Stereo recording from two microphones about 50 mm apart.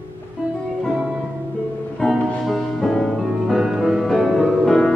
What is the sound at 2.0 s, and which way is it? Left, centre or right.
Music, centre.